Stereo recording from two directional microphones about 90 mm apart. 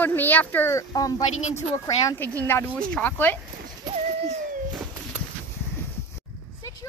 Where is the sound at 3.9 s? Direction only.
50° right (ahead or behind).